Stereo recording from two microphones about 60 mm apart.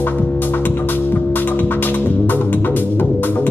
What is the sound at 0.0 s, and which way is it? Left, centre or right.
Music, left.